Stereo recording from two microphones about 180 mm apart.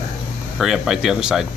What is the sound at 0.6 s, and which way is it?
Speech, centre (ahead or behind).